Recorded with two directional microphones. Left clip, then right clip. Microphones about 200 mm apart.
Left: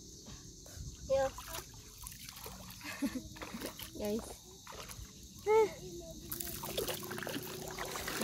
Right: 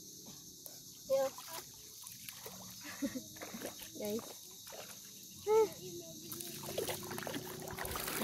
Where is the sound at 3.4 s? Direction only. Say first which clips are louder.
Left 1 dB; 30° left (ahead or behind).